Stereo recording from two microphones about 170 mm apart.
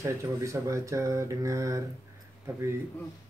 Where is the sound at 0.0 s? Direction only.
15° right (ahead or behind).